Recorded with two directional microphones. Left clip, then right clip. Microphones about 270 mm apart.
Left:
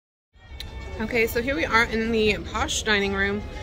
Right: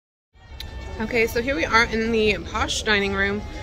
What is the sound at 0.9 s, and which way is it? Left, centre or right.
Speech, centre.